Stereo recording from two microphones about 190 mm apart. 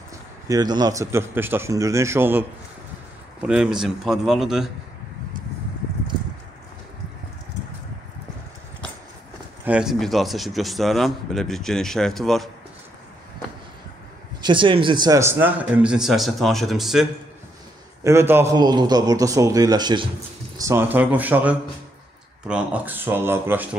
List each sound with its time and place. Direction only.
0.5 s speech: 20° right (ahead or behind)
3.4 s a man's voice: 5° right (ahead or behind)
9.7 s a man's voice: 5° right (ahead or behind)
14.4 s a man's voice: 25° right (ahead or behind); by 17.1 s centre (ahead or behind)
18.0 s a man's voice: 10° right (ahead or behind)